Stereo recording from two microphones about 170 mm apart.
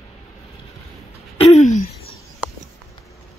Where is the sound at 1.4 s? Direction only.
40° left (ahead or behind).